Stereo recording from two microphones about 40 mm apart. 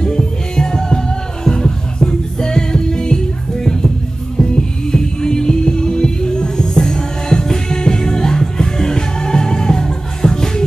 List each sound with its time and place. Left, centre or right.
0.0 s music: centre
4.9 s music: centre